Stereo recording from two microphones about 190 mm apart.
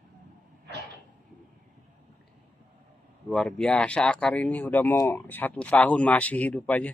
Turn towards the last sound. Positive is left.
turn(degrees=5)  # may be behind; listen again after turning